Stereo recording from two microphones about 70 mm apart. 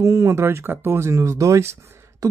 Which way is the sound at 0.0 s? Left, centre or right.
Right.